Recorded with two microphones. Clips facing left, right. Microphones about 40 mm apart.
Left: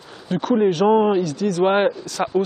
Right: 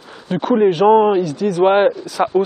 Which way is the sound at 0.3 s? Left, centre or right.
Centre.